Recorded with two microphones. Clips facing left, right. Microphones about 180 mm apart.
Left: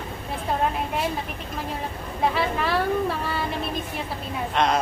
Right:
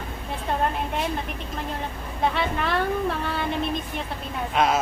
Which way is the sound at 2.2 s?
Centre (ahead or behind).